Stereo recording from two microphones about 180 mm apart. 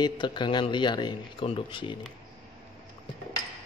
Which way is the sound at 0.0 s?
25° left (ahead or behind).